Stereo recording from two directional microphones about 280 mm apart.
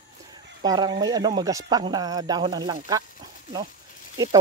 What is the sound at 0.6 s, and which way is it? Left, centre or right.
Speech, centre.